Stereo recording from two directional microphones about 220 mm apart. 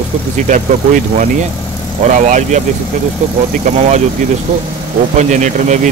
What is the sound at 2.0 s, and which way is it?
Speech, 35° right (ahead or behind).